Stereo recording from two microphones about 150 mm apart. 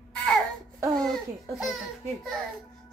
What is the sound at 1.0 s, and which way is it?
Speech, centre (ahead or behind).